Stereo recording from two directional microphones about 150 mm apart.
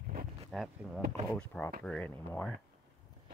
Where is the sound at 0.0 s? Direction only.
80° right.